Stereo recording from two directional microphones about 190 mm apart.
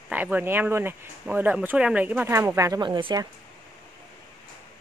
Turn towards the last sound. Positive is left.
turn(degrees=-25)  # may be behind; listen again after turning